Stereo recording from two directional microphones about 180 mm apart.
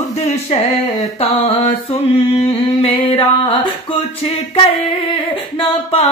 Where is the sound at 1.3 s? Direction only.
35° left (ahead or behind).